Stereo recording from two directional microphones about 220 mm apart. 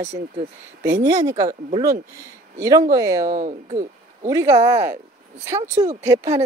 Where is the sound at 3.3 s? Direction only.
30° right (ahead or behind).